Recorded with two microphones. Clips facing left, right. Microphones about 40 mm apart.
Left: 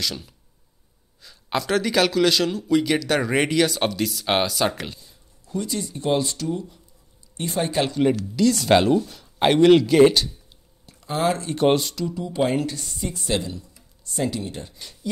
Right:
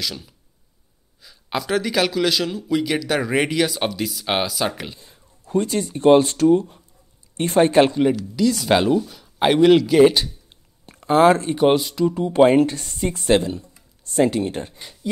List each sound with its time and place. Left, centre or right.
0.0 s speech: centre
5.0 s speech: right
8.0 s speech: centre
10.2 s a sound: right
11.5 s speech: centre
12.1 s speech: right